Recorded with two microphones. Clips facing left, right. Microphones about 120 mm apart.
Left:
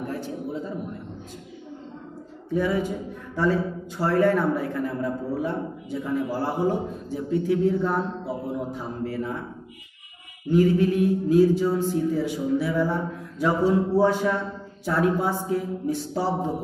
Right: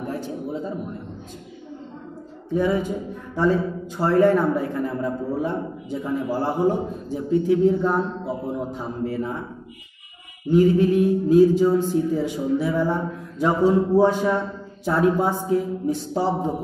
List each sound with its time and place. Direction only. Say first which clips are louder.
0.0 s a sound: right 2 dB; 20° right (ahead or behind)
2.5 s a man's voice: right 2 dB; 20° right (ahead or behind)
4.0 s a man's voice: right 3 dB; 25° right (ahead or behind)
10.5 s a man's voice: right 3 dB; 20° right (ahead or behind)